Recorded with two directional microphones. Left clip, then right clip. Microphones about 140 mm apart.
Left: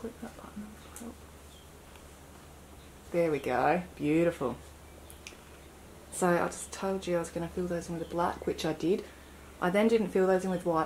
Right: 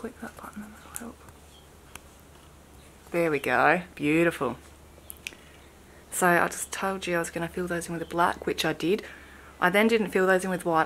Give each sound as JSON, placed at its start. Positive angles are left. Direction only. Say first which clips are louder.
{"t": 3.1, "sound": "a woman's voice", "louder": "right 4 dB", "side_deg": -30}
{"t": 5.3, "sound": "a sound", "louder": "right 10 dB", "side_deg": -30}
{"t": 6.1, "sound": "a woman's voice", "louder": "right 6 dB", "side_deg": -30}